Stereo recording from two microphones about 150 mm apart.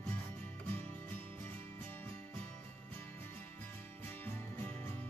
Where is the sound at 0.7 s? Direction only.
10° left (ahead or behind).